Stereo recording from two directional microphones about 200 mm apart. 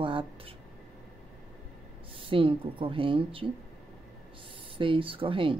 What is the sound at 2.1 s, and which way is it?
A woman's voice, 25° right (ahead or behind).